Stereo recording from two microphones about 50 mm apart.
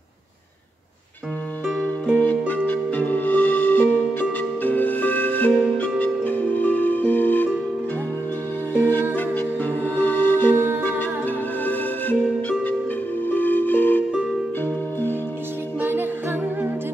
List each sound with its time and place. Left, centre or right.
2.1 s music: left
8.7 s music: left
10.5 s music: right
10.8 s music: left
15.8 s music: right